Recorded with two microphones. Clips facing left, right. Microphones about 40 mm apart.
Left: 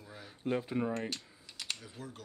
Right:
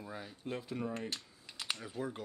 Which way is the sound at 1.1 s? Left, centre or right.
Centre.